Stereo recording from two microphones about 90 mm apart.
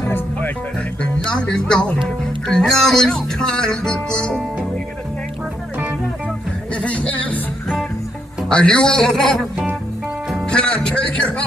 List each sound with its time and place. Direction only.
0.0 s music: 25° left (ahead or behind)
1.0 s speech: 10° left (ahead or behind)
2.0 s music: 5° left (ahead or behind)
6.7 s music: 15° left (ahead or behind)
10.5 s music: 10° left (ahead or behind)